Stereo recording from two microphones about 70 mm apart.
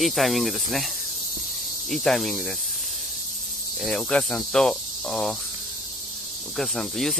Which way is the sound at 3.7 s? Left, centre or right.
Centre.